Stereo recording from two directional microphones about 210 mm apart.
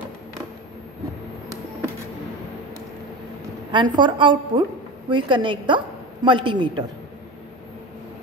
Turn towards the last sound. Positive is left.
turn(degrees=-25)  # may be behind; listen again after turning